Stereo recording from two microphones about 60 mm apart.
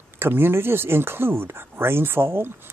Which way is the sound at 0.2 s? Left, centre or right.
Right.